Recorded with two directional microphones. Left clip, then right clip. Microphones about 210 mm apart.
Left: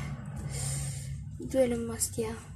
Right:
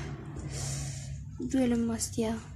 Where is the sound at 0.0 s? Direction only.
15° right (ahead or behind).